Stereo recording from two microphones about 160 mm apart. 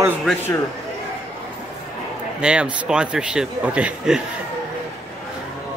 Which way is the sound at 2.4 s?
5° right (ahead or behind).